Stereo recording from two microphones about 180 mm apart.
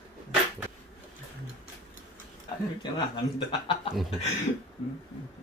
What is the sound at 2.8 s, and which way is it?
Speech, 25° left (ahead or behind).